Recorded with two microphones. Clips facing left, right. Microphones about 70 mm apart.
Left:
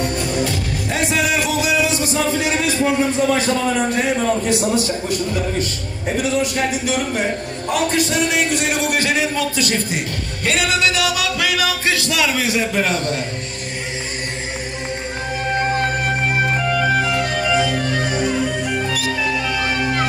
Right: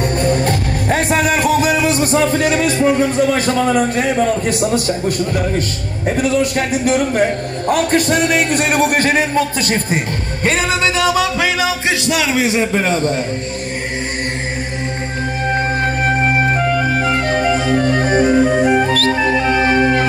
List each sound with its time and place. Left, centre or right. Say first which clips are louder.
0.0 s music: right 5 dB; right
3.3 s a man's voice: right 4 dB; right
17.0 s music: right 4 dB; right